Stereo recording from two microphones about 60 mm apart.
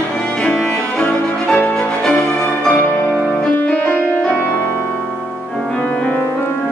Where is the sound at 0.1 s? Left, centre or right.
Centre.